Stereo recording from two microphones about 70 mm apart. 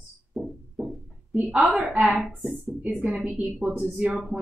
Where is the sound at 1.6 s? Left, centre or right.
Centre.